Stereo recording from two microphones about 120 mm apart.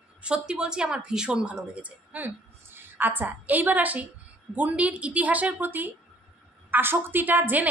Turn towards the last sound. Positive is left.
turn(degrees=-15)  # may be behind; listen again after turning